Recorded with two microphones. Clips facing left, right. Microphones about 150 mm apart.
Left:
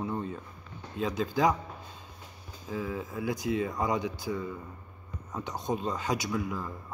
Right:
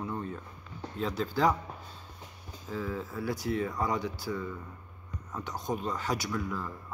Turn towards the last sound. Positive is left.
turn(degrees=15)  # may be behind; listen again after turning